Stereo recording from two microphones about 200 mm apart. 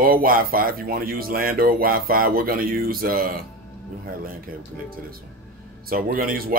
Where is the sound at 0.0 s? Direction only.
45° right (ahead or behind).